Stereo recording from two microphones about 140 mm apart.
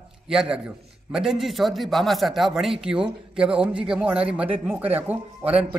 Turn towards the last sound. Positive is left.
turn(degrees=-10)  # may be behind; listen again after turning